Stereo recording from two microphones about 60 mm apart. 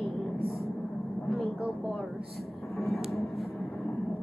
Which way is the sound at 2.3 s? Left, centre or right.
Centre.